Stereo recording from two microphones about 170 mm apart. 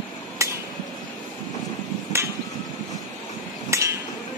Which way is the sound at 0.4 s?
15° right (ahead or behind).